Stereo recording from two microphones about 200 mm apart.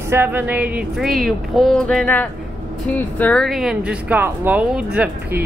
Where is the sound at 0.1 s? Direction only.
10° right (ahead or behind).